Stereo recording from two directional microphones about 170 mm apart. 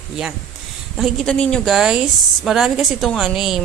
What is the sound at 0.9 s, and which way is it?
A woman's voice, centre (ahead or behind).